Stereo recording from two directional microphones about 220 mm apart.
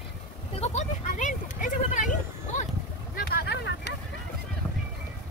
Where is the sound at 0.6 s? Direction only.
35° left (ahead or behind).